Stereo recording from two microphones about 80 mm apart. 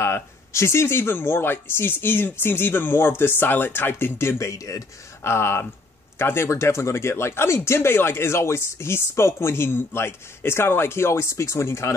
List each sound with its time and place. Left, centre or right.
0.0 s speech: left
5.2 s speech: left